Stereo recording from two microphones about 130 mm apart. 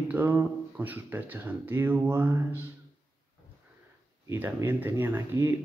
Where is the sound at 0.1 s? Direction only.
15° right (ahead or behind).